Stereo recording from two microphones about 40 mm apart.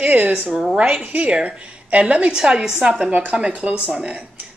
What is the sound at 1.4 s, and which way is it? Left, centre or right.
Speech, right.